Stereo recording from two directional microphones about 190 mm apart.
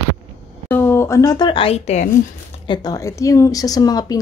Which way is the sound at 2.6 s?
20° left (ahead or behind).